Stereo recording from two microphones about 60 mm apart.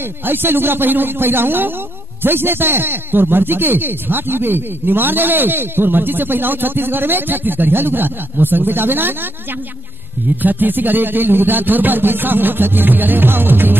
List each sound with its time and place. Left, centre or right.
0.0 s a man's voice: right